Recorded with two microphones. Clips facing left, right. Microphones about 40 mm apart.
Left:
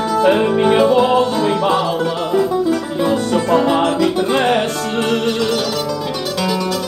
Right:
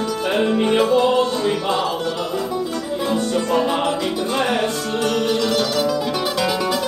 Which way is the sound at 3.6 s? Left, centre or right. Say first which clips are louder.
Left 5 dB; left.